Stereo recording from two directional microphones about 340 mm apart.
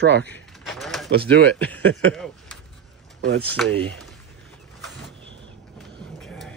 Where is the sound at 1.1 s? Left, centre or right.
Right.